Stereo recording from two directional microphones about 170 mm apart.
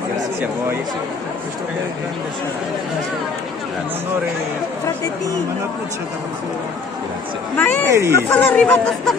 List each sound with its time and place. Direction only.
7.5 s speech: 10° left (ahead or behind)